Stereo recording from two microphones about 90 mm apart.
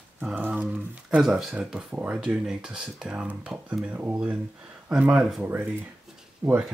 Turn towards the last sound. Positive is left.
turn(degrees=-40)  # may be behind; listen again after turning